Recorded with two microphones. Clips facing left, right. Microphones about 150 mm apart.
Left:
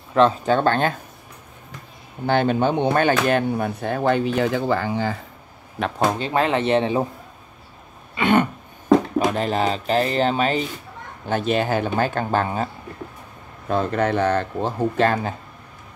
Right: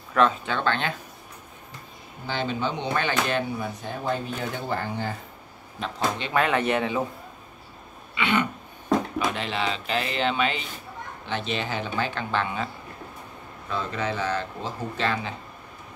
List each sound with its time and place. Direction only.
0.1 s speech: 35° left (ahead or behind)
2.2 s speech: 55° left (ahead or behind); by 5.1 s 90° left
5.8 s speech: 65° left (ahead or behind)
6.1 s speech: 35° left (ahead or behind)
8.1 s throat clearing: 45° left (ahead or behind)
9.3 s speech: 45° left (ahead or behind)
13.7 s speech: 55° left (ahead or behind)